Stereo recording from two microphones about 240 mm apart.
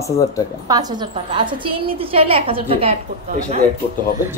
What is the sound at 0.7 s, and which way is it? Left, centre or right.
A woman's voice, centre.